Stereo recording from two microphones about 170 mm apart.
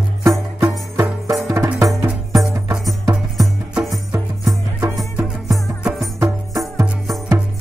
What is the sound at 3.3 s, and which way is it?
Music, centre (ahead or behind).